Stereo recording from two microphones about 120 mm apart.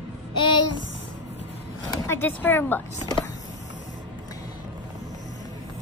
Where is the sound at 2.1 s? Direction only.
15° left (ahead or behind).